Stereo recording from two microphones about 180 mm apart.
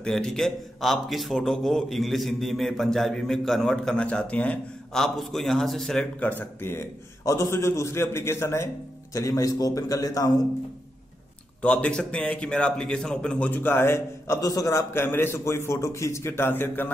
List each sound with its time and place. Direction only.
0.0 s a man's voice: 5° left (ahead or behind); by 10.3 s 20° left (ahead or behind)
11.6 s a man's voice: 5° left (ahead or behind)